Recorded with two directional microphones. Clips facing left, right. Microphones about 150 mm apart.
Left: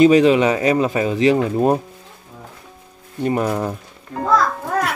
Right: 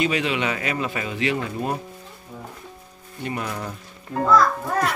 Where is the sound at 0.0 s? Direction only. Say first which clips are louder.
Left 12 dB; 40° left (ahead or behind).